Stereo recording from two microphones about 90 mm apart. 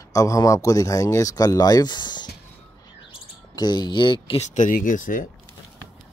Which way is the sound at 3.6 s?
55° left (ahead or behind).